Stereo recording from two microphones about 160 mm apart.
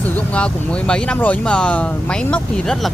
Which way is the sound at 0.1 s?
5° left (ahead or behind).